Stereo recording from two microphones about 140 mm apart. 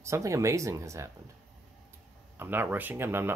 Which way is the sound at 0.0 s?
20° right (ahead or behind).